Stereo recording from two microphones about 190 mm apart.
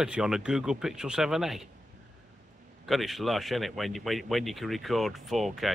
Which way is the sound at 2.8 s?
Centre (ahead or behind).